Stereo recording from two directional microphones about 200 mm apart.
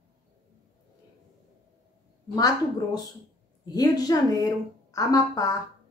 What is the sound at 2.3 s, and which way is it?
A woman's voice, 20° left (ahead or behind).